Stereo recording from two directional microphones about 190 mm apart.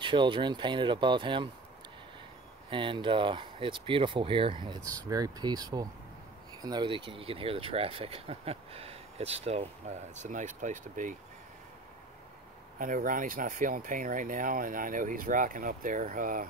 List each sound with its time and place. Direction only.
0.0 s speech: 25° right (ahead or behind)
2.7 s speech: 25° right (ahead or behind); by 11.1 s 45° right (ahead or behind)
12.7 s speech: 45° right (ahead or behind)